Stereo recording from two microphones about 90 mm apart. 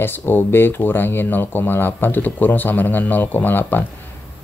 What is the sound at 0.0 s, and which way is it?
Speech, 25° left (ahead or behind).